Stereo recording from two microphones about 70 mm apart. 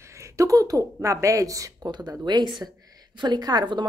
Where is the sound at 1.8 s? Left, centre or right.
Right.